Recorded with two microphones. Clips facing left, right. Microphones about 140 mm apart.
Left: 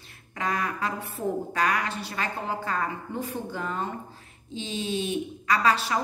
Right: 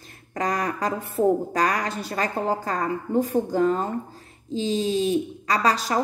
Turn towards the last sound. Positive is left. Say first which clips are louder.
# right 2 dB
turn(degrees=-40)  # may be behind; listen again after turning